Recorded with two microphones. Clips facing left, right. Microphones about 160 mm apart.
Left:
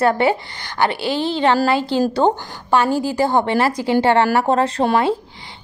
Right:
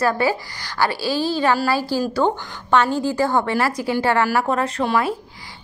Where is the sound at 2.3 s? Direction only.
35° left (ahead or behind).